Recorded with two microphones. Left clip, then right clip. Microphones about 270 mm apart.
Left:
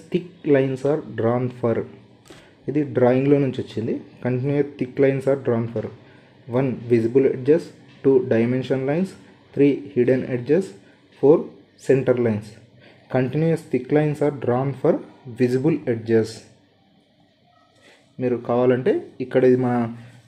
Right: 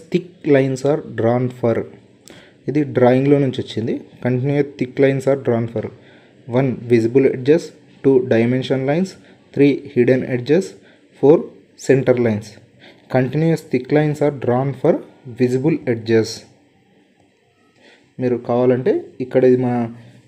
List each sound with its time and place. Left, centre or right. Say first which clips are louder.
0.1 s speech: right 4 dB; centre
18.2 s speech: right 3 dB; centre